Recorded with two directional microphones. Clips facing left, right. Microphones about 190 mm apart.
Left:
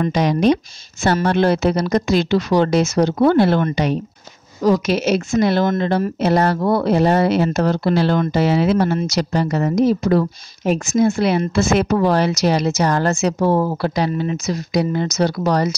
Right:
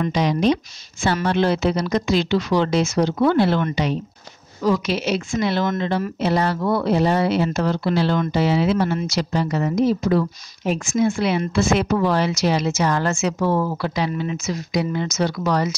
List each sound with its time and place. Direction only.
0.0 s speech: 50° left (ahead or behind)